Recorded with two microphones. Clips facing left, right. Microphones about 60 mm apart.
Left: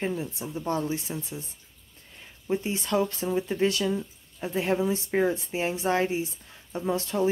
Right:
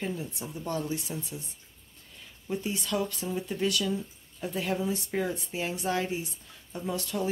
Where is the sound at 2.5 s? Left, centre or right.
Left.